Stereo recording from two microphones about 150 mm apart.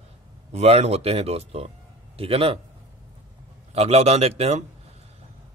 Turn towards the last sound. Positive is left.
turn(degrees=-45)  # may be behind; listen again after turning